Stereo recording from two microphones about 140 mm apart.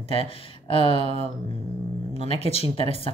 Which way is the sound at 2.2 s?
45° left (ahead or behind).